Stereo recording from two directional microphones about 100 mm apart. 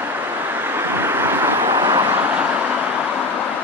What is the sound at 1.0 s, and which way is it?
Vehicle, 25° right (ahead or behind).